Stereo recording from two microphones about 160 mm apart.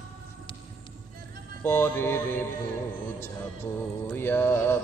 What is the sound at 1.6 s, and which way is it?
Music, 15° left (ahead or behind).